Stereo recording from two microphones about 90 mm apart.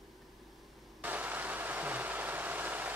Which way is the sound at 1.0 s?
20° right (ahead or behind).